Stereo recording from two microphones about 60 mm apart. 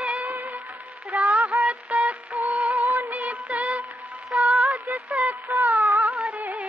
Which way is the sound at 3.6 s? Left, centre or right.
Right.